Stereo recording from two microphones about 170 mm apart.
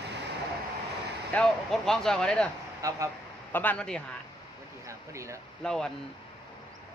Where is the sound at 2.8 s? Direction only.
20° right (ahead or behind).